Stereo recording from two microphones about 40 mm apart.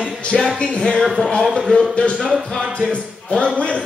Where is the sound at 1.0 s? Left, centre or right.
Centre.